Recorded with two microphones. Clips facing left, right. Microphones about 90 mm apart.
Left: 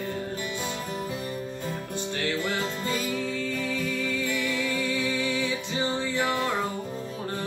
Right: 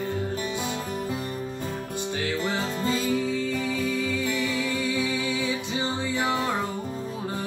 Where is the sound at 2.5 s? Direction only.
20° right (ahead or behind).